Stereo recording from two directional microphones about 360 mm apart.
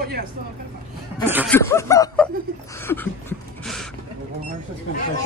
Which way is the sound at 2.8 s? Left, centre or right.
Centre.